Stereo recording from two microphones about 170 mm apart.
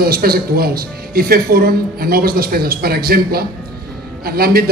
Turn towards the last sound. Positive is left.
turn(degrees=-65)  # may be behind; listen again after turning